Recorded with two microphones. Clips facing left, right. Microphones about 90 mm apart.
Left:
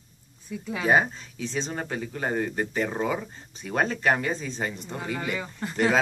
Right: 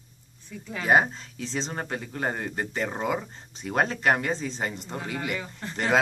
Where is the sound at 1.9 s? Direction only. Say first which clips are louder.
Left 3 dB; 45° right (ahead or behind).